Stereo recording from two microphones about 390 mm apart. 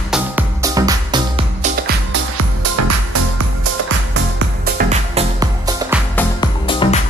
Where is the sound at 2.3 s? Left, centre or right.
Right.